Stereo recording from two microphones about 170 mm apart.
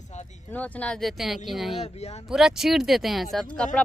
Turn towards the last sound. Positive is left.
turn(degrees=5)  # may be behind; listen again after turning